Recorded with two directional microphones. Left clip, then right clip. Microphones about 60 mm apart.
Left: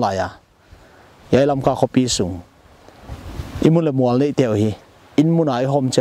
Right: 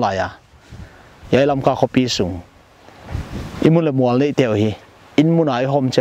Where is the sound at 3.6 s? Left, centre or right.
Left.